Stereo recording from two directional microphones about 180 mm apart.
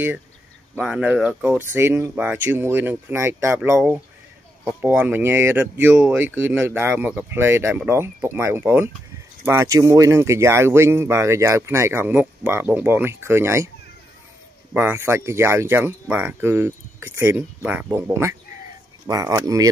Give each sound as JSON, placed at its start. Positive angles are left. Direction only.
{"t": 0.7, "sound": "speech", "side_deg": -5}
{"t": 14.7, "sound": "speech", "side_deg": -10}